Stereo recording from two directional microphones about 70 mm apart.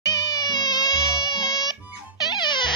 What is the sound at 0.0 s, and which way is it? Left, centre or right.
Music, left.